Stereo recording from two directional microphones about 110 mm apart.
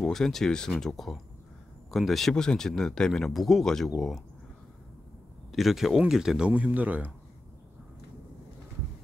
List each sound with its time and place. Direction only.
0.0 s speech: 5° left (ahead or behind)
5.5 s speech: centre (ahead or behind)